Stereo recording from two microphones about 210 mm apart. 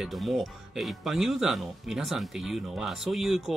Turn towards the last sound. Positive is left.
turn(degrees=0)  # may be behind; listen again after turning